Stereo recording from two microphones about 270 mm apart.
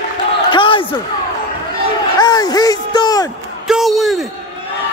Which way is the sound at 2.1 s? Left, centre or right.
Centre.